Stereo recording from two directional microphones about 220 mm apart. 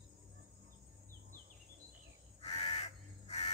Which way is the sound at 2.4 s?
30° left (ahead or behind).